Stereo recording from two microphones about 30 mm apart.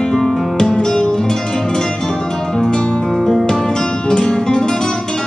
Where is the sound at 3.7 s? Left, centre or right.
Left.